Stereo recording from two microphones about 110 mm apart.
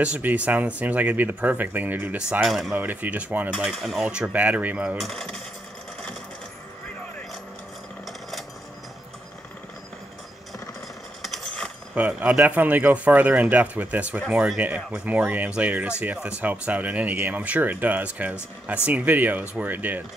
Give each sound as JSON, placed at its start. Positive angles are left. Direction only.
{"t": 0.0, "sound": "speech", "side_deg": -15}
{"t": 2.7, "sound": "speech", "side_deg": -15}
{"t": 4.9, "sound": "coin", "side_deg": 0}
{"t": 11.2, "sound": "a sound", "side_deg": 5}
{"t": 11.9, "sound": "speech", "side_deg": -10}